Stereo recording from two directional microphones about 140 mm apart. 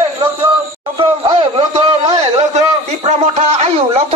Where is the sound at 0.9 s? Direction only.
35° right (ahead or behind).